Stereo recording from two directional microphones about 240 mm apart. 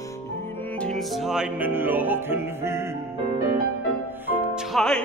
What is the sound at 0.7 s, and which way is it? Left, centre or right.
Music, centre.